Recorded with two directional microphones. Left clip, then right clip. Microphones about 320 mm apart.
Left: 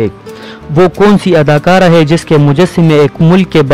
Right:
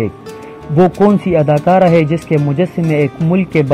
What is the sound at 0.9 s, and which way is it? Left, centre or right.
A man's voice, left.